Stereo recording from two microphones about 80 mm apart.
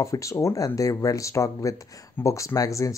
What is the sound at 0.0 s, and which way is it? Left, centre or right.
Speech, left.